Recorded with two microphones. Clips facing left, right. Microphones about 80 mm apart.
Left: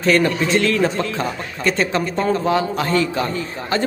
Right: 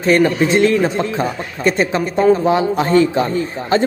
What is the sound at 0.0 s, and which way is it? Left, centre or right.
A man's voice, right.